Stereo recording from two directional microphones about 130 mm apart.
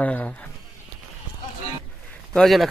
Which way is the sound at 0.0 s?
15° left (ahead or behind).